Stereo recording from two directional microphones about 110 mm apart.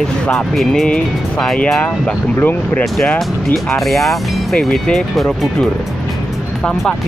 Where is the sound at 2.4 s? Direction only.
15° left (ahead or behind).